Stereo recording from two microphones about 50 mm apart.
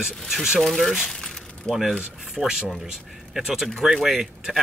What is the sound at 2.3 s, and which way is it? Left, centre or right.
Speech, centre.